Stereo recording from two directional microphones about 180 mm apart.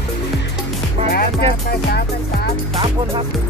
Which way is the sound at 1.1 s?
60° left (ahead or behind).